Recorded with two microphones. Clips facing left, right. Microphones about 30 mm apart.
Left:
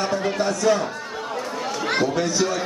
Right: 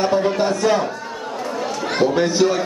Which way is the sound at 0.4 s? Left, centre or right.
Right.